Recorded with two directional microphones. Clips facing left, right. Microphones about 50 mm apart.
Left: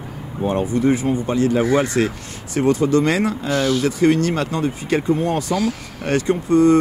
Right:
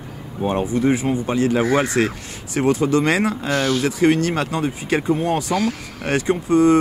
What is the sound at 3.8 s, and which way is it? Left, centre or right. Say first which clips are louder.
Speech: left 1 dB; right.